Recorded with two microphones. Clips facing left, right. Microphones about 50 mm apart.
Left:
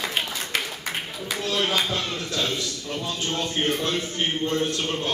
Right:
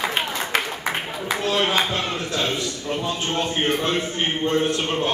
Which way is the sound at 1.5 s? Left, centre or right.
Right.